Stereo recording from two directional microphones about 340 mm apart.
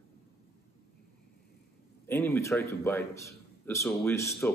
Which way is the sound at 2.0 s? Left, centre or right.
Centre.